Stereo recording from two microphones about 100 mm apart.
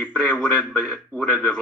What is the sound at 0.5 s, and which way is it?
Speech, 5° right (ahead or behind).